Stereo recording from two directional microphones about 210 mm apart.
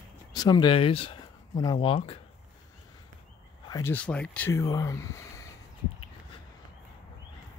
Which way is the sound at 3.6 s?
15° left (ahead or behind).